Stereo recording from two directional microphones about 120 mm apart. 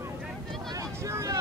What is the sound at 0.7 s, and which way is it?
Vehicle, 25° right (ahead or behind).